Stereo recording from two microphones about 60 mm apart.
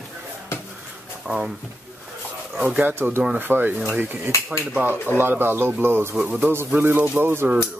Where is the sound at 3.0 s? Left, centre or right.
Right.